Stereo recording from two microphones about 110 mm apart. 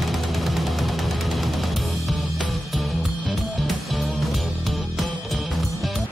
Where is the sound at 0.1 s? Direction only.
Centre (ahead or behind).